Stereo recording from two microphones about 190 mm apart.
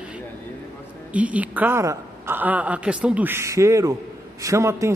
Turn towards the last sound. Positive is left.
turn(degrees=-15)  # may be behind; listen again after turning